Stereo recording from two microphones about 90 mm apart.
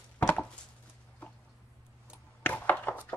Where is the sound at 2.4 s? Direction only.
20° left (ahead or behind).